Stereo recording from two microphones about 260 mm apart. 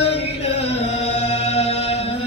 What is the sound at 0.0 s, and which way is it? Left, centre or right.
Music, left.